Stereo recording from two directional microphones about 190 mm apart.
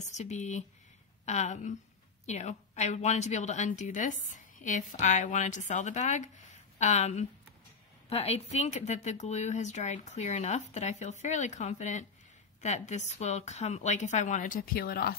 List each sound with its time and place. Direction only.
0.0 s a woman's voice: 35° left (ahead or behind)